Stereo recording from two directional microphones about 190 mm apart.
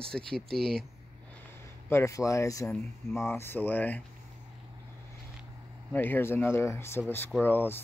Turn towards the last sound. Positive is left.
turn(degrees=10)  # may be behind; listen again after turning